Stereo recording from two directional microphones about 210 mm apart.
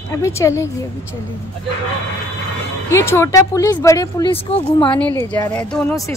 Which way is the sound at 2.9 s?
15° left (ahead or behind).